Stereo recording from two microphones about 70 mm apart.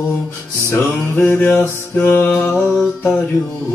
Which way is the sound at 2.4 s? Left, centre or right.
Left.